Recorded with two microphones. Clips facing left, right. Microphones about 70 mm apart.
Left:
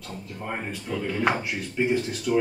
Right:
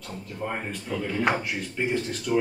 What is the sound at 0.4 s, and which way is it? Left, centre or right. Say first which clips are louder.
Speech: right 1 dB; centre.